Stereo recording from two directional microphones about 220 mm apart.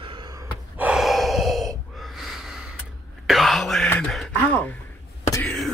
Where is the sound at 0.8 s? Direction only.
5° right (ahead or behind).